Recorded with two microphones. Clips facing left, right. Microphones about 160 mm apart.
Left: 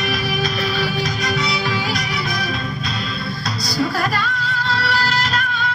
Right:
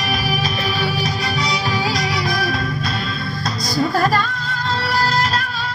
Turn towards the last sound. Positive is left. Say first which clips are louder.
# right 1 dB
turn(degrees=-35)  # may be behind; listen again after turning